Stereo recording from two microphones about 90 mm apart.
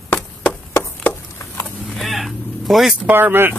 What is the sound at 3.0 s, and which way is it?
Speech, 20° right (ahead or behind).